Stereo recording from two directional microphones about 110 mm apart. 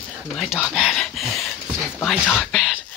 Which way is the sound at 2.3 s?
Centre (ahead or behind).